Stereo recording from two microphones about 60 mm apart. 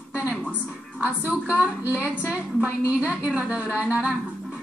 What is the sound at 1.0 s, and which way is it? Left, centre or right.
A woman's voice, right.